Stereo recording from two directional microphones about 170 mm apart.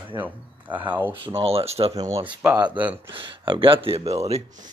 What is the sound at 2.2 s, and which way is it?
Speech, 10° right (ahead or behind).